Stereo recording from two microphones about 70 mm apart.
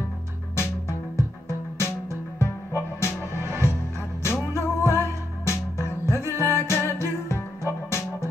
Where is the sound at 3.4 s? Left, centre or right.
Right.